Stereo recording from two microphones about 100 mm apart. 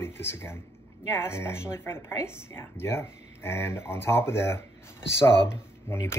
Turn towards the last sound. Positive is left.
turn(degrees=25)  # may be behind; listen again after turning